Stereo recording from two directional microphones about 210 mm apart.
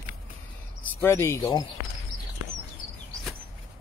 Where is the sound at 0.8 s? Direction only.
10° left (ahead or behind).